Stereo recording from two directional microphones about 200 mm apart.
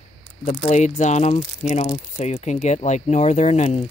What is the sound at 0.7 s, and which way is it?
Speech, 35° left (ahead or behind).